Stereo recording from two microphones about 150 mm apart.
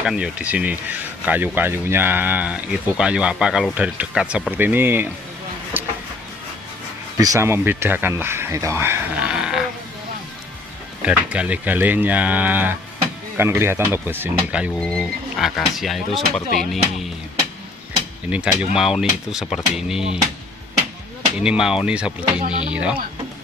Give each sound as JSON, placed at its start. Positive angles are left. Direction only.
{"t": 0.0, "sound": "speech", "side_deg": -5}
{"t": 7.2, "sound": "speech", "side_deg": -20}
{"t": 11.1, "sound": "speech", "side_deg": -10}
{"t": 14.8, "sound": "speech", "side_deg": 5}
{"t": 18.3, "sound": "speech", "side_deg": -5}
{"t": 21.4, "sound": "speech", "side_deg": -5}